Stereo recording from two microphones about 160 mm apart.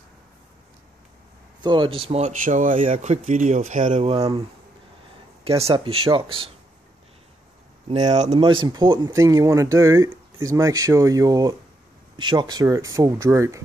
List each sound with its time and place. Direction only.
1.6 s speech: 30° right (ahead or behind)
5.6 s speech: 35° right (ahead or behind)
8.1 s speech: 45° right (ahead or behind)
8.4 s speech: 30° right (ahead or behind)